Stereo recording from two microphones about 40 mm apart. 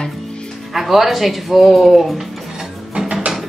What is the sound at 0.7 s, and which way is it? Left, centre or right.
Speech, centre.